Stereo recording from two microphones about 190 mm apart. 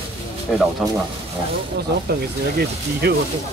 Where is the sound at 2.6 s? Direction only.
60° right (ahead or behind).